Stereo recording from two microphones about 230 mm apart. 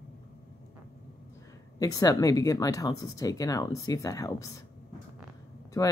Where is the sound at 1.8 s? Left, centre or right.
Centre.